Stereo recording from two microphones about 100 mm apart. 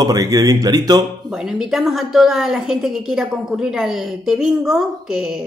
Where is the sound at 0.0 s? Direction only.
40° right (ahead or behind).